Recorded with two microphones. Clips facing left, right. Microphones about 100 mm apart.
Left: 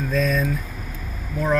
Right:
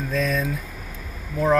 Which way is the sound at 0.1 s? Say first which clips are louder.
Left 2 dB; 30° right (ahead or behind).